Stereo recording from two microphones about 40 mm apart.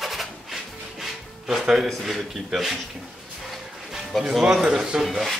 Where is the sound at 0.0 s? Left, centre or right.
Centre.